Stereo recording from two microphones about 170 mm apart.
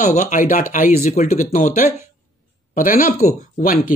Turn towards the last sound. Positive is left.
turn(degrees=55)  # may be behind; listen again after turning